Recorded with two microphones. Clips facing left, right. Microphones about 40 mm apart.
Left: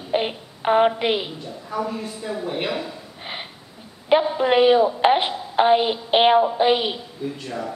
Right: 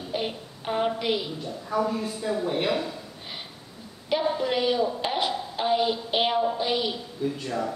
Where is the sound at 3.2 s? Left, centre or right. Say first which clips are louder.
Left 6 dB; left.